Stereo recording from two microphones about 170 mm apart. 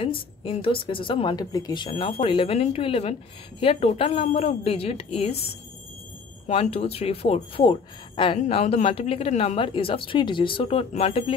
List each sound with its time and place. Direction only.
0.0 s a woman's voice: 30° left (ahead or behind)
6.4 s a woman's voice: 40° left (ahead or behind)